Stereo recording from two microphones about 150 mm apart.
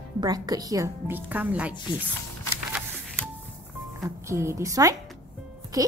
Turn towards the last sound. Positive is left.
turn(degrees=-25)  # may be behind; listen again after turning